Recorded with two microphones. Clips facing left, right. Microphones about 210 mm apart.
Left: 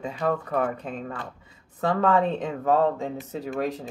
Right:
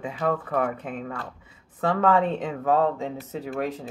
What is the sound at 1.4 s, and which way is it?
Speech, 35° left (ahead or behind).